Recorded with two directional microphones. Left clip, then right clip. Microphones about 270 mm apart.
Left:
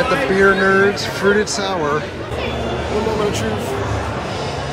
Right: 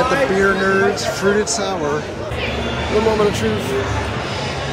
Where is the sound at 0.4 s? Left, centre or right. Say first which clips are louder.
Left 2 dB; centre.